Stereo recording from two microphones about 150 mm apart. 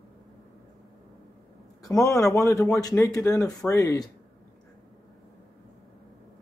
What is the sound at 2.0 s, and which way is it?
Speech, 20° left (ahead or behind).